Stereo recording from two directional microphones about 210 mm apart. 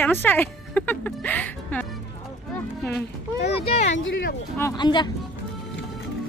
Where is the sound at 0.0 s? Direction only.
10° left (ahead or behind).